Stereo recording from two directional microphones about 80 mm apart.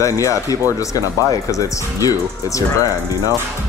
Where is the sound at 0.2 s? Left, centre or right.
Left.